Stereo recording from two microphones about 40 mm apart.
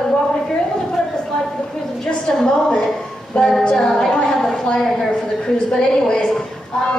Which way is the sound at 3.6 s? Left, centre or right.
Centre.